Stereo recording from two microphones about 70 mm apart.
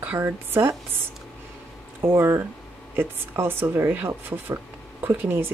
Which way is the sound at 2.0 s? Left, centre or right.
Right.